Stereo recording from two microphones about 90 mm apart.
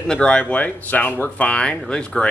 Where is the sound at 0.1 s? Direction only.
10° left (ahead or behind).